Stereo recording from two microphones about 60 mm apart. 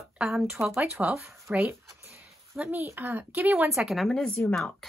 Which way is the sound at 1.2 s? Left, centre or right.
Right.